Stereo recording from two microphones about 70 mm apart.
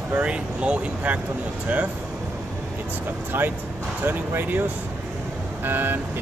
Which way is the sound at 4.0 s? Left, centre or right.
Right.